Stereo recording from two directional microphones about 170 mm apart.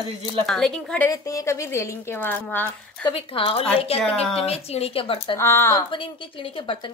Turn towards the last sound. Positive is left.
turn(degrees=30)  # may be behind; listen again after turning